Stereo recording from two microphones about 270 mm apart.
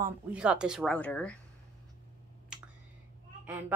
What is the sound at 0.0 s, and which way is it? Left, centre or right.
Speech, centre.